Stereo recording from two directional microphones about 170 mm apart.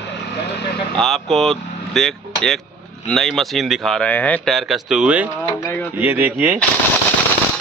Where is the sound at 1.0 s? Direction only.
Centre (ahead or behind).